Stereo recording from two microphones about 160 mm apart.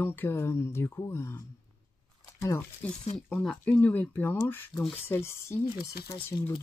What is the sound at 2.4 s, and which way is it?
Speech, 15° left (ahead or behind).